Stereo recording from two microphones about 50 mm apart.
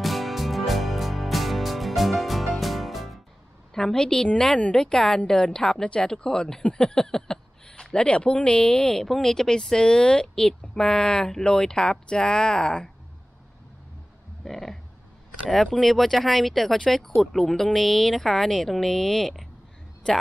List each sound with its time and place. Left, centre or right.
0.0 s music: centre
3.7 s a woman's voice: centre
8.9 s a woman's voice: centre
14.4 s a woman's voice: centre